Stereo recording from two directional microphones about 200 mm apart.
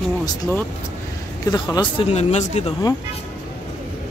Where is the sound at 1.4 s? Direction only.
20° left (ahead or behind).